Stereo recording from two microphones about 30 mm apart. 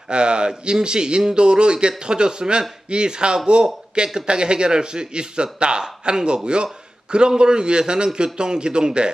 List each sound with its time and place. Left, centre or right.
0.1 s a man's voice: right